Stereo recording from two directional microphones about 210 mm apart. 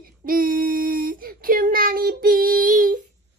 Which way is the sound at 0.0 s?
40° right (ahead or behind).